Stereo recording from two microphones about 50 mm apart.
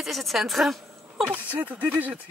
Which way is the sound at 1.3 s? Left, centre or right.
Right.